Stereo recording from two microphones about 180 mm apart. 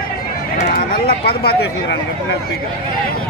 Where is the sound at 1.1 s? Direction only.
60° left (ahead or behind).